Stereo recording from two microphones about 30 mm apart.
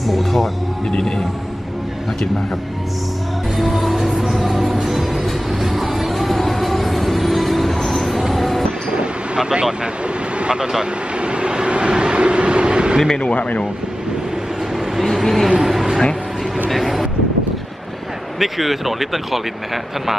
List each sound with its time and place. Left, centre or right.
0.0 s speech: centre
0.9 s speech: left
3.5 s music: centre
8.2 s vehicle: centre
8.9 s a sound: right
9.5 s speech: right
11.1 s train: right
13.2 s speech: left
15.2 s speech: centre
15.6 s a sound: centre
16.7 s speech: centre
18.4 s speech: centre